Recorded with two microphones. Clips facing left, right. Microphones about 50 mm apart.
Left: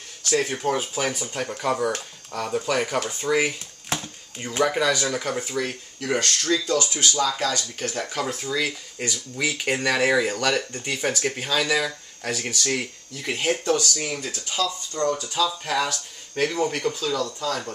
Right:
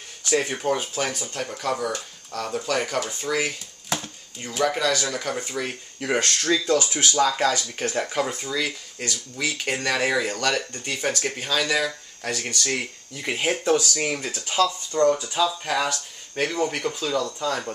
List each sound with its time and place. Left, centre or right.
0.2 s speech: centre
4.7 s speech: centre
5.9 s speech: centre
8.0 s speech: centre